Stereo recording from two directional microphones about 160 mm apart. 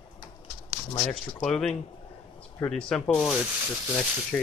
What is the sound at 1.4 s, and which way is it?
Speech, 5° left (ahead or behind).